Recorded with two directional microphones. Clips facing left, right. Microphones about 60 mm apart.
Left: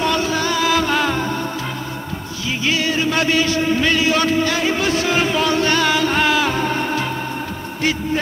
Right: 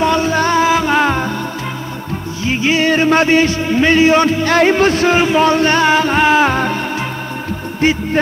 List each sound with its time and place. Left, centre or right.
0.0 s music: right
0.7 s music: right
2.4 s music: right
2.9 s speech: right
4.5 s speech: right
7.8 s speech: right